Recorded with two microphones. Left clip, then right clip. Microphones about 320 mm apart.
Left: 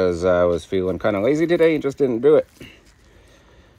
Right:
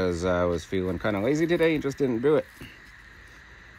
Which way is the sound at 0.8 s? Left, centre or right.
Left.